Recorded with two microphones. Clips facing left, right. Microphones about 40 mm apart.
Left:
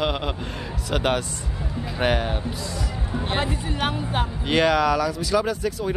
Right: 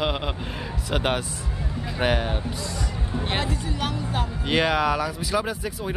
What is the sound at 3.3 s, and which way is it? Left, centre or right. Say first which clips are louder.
Speech: left 3 dB; left.